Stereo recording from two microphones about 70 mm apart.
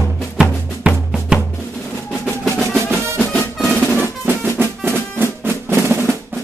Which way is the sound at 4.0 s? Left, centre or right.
Right.